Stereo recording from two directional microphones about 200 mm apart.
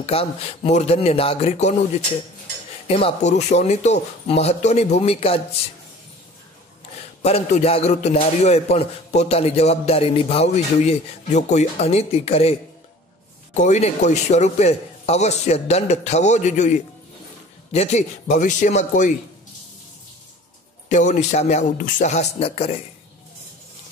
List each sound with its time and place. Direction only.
0.0 s a man's voice: 30° left (ahead or behind)
2.9 s a man's voice: 30° left (ahead or behind)
7.2 s a man's voice: 30° left (ahead or behind)
13.6 s a man's voice: 35° left (ahead or behind)
20.9 s a man's voice: 35° left (ahead or behind)